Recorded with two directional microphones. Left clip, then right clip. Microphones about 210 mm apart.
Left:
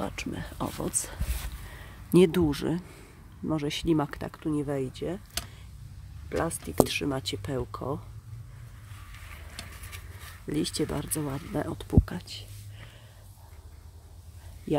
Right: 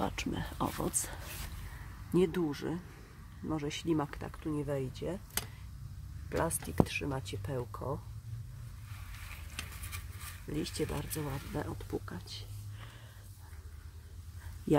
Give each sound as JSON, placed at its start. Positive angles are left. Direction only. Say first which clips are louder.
{"t": 0.0, "sound": "speech", "louder": "left 2 dB", "side_deg": 0}
{"t": 2.1, "sound": "speech", "louder": "left 9 dB", "side_deg": 30}
{"t": 6.2, "sound": "speech", "louder": "left 4 dB", "side_deg": 20}
{"t": 10.4, "sound": "speech", "louder": "left 7 dB", "side_deg": 35}